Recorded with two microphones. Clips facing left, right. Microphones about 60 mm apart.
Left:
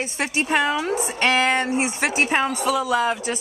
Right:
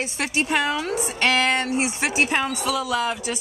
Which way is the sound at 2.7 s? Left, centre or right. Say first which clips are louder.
Left 4 dB; centre.